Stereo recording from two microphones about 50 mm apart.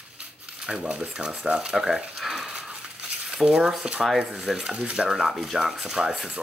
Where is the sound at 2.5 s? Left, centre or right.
Right.